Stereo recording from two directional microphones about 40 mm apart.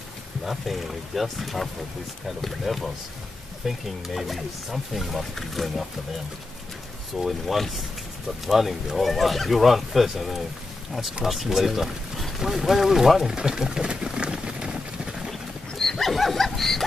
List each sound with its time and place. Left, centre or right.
0.5 s speech: centre
7.2 s speech: centre
13.3 s vehicle: centre
15.7 s wild animals: centre